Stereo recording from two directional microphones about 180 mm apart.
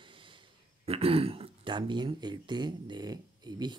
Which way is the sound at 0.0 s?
25° right (ahead or behind).